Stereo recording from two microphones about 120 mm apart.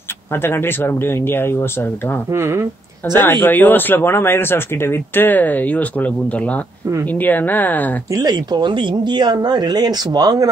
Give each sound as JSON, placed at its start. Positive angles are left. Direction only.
{"t": 0.3, "sound": "speech", "side_deg": 20}
{"t": 2.3, "sound": "speech", "side_deg": -20}
{"t": 3.1, "sound": "speech", "side_deg": 15}
{"t": 8.1, "sound": "speech", "side_deg": -30}